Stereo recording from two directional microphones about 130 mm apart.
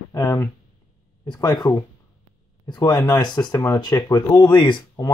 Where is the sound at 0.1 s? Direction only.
25° left (ahead or behind).